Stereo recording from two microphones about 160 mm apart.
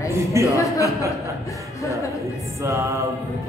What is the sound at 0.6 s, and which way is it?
Speech, 20° left (ahead or behind).